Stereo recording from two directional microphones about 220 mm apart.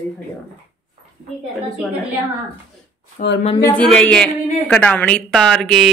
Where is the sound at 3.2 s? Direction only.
35° left (ahead or behind).